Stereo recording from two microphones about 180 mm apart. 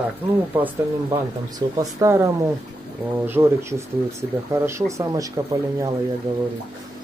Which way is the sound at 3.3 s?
15° right (ahead or behind).